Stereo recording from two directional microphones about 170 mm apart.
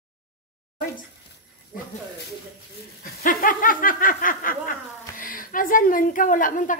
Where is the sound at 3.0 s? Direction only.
60° left (ahead or behind).